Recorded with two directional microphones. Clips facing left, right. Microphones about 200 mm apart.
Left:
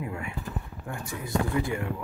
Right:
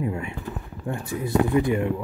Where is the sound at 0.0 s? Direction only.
25° right (ahead or behind).